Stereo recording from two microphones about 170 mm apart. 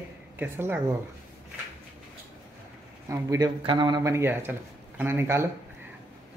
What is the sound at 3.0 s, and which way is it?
Speech, 20° right (ahead or behind).